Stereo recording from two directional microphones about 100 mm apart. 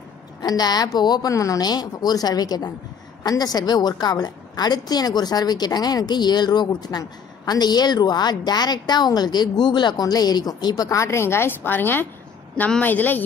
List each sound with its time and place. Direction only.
0.4 s a woman's voice: 45° left (ahead or behind); by 13.2 s 20° left (ahead or behind)